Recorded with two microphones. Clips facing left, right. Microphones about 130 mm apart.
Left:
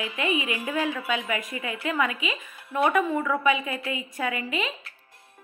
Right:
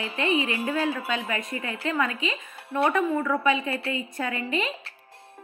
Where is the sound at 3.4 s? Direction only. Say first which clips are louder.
Even; 10° left (ahead or behind).